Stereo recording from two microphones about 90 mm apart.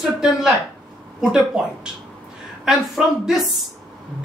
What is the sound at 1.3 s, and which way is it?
Speech, 10° right (ahead or behind).